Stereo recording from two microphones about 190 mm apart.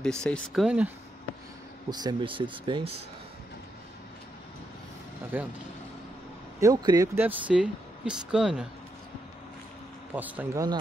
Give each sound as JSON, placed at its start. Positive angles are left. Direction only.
{"t": 0.0, "sound": "speech", "side_deg": 5}
{"t": 1.9, "sound": "speech", "side_deg": -25}
{"t": 5.3, "sound": "speech", "side_deg": -10}
{"t": 6.6, "sound": "speech", "side_deg": -20}
{"t": 10.1, "sound": "speech", "side_deg": -10}